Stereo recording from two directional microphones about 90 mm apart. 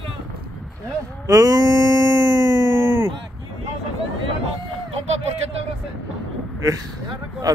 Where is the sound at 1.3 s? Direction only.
35° right (ahead or behind).